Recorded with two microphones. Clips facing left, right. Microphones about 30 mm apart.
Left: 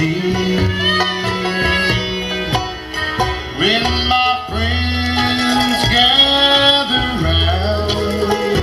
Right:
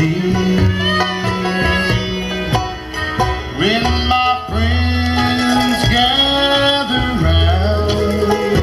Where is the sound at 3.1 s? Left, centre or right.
Centre.